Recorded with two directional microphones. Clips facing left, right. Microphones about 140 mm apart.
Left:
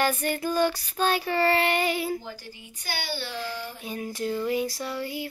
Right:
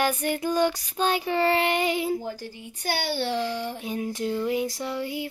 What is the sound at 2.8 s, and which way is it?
Child singing, 60° right (ahead or behind).